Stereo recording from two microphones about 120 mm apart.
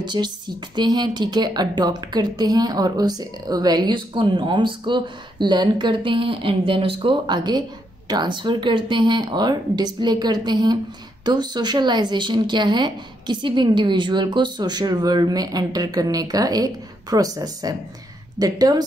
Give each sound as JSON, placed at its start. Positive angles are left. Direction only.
{"t": 0.0, "sound": "a woman's voice", "side_deg": -40}